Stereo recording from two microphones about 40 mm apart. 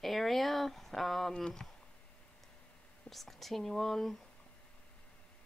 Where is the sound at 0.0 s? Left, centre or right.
Centre.